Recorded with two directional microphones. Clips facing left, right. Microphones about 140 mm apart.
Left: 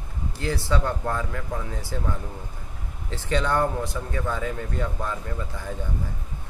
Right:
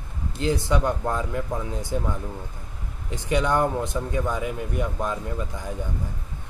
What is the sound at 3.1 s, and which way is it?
Speech, 15° right (ahead or behind).